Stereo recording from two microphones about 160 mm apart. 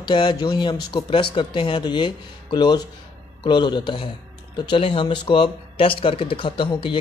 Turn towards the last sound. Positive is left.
turn(degrees=30)  # may be behind; listen again after turning